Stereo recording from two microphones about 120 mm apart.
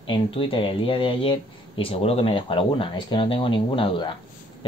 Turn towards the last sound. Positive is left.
turn(degrees=45)  # may be behind; listen again after turning